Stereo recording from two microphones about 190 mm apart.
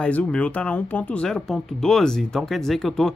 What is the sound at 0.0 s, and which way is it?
Speech, 5° left (ahead or behind).